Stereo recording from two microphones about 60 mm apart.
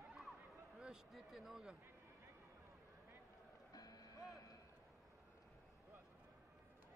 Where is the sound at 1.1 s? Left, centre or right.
Centre.